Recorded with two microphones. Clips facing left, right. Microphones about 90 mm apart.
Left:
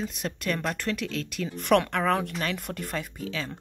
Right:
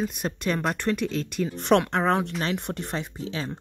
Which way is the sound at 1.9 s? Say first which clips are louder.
Right 2 dB; 25° right (ahead or behind).